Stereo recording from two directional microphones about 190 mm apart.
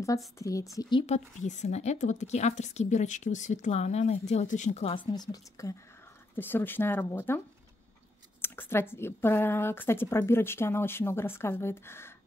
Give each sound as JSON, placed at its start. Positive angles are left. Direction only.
{"t": 0.4, "sound": "a woman's voice", "side_deg": 15}
{"t": 5.1, "sound": "speech", "side_deg": 20}